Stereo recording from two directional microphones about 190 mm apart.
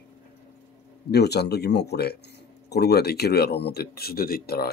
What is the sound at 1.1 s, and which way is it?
Speech, 60° left (ahead or behind).